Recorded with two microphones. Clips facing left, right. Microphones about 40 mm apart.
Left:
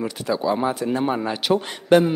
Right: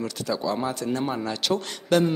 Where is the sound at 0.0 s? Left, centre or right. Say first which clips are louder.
Left 4 dB; centre.